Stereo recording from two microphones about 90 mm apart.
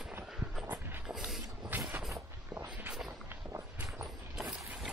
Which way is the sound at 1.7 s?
20° right (ahead or behind).